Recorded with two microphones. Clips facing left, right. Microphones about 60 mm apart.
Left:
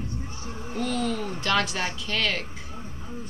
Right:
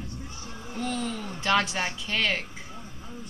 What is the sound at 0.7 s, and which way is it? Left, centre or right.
A woman's voice, centre.